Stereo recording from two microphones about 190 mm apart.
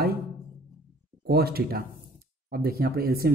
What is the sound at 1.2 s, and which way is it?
Speech, 55° right (ahead or behind).